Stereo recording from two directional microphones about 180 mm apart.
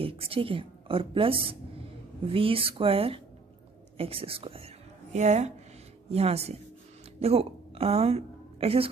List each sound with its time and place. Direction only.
0.0 s a woman's voice: 30° right (ahead or behind)